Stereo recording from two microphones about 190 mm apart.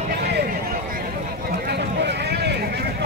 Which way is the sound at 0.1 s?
55° right (ahead or behind).